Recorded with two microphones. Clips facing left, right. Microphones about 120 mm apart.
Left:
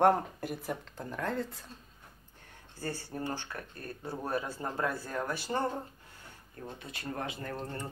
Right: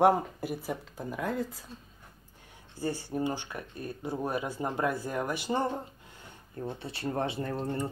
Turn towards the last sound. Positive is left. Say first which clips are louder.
# right 6 dB
turn(degrees=-20)  # may be behind; listen again after turning